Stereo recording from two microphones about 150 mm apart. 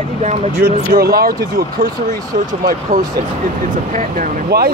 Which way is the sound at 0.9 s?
90° right.